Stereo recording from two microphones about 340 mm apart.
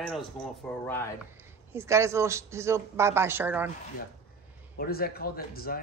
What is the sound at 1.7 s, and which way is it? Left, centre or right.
Speech, centre.